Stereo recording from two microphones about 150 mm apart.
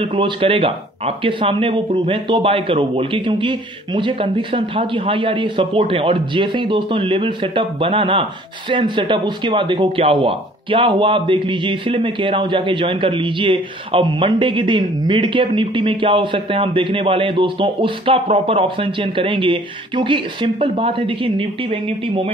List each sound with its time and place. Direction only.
0.0 s speech: 35° right (ahead or behind)